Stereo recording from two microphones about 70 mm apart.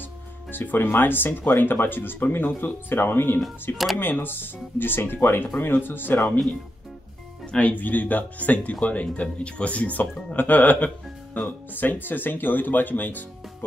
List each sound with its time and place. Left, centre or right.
0.0 s speech: left
3.7 s speech: centre
4.0 s speech: left
7.5 s speech: left